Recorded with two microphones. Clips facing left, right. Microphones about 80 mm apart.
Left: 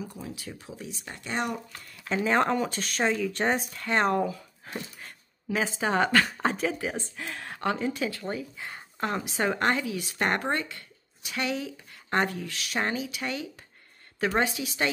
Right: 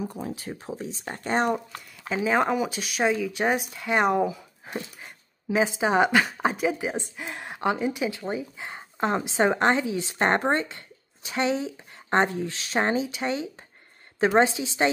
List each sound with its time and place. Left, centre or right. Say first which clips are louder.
0.0 s speech: right 6 dB; right
2.0 s speech: right 1 dB; centre; by 14.9 s right